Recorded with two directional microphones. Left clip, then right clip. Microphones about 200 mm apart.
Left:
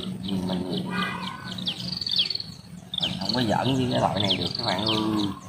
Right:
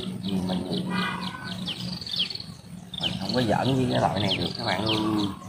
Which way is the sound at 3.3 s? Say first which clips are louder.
Right 1 dB; centre (ahead or behind).